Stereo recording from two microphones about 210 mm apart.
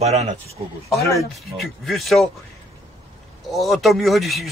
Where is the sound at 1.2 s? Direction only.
Centre (ahead or behind).